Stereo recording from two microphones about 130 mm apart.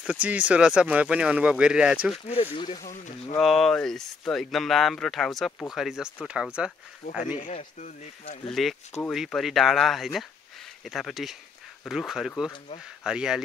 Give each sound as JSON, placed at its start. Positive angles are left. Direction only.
{"t": 0.0, "sound": "speech", "side_deg": -10}
{"t": 2.5, "sound": "speech", "side_deg": 40}
{"t": 2.8, "sound": "speech", "side_deg": 80}
{"t": 3.3, "sound": "speech", "side_deg": 0}
{"t": 7.0, "sound": "speech", "side_deg": 90}
{"t": 7.3, "sound": "speech", "side_deg": 70}
{"t": 8.5, "sound": "speech", "side_deg": 0}